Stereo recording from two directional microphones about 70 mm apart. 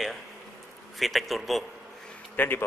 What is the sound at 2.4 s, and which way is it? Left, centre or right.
Speech, left.